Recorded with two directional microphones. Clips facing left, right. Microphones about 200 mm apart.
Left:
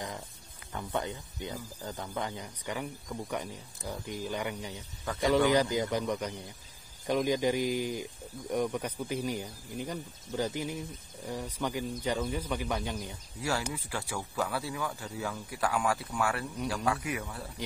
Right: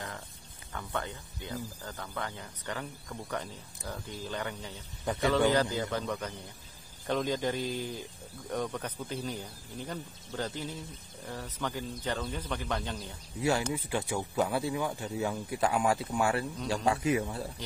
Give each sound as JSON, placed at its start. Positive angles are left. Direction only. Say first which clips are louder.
{"t": 0.7, "sound": "speech", "louder": "left 3 dB", "side_deg": 20}
{"t": 5.1, "sound": "speech", "louder": "right 4 dB", "side_deg": -20}
{"t": 5.5, "sound": "speech", "louder": "left 2 dB", "side_deg": 15}
{"t": 13.4, "sound": "speech", "louder": "right 4 dB", "side_deg": -20}